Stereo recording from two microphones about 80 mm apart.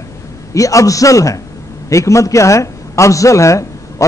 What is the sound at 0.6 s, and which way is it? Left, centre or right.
A man's voice, left.